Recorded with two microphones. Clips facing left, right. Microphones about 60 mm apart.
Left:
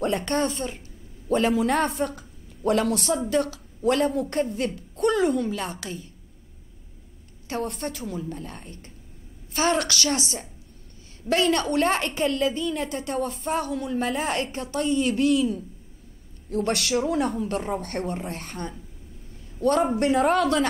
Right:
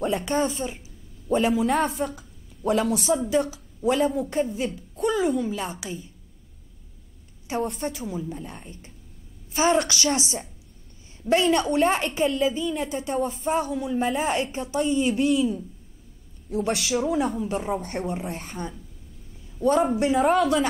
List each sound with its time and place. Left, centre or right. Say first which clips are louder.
0.0 s a woman's voice: even; centre
7.6 s a man's voice: right 2 dB; centre
11.5 s a woman's voice: right 1 dB; centre